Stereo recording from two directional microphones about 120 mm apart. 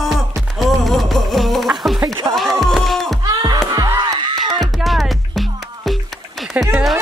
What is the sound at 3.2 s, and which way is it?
Music, 30° right (ahead or behind).